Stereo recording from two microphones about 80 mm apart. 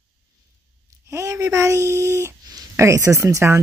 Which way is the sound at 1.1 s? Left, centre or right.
Right.